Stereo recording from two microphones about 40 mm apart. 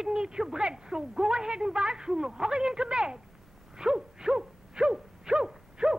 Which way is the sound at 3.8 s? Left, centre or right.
Centre.